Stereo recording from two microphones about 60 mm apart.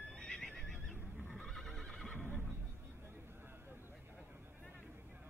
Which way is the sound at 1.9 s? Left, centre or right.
Centre.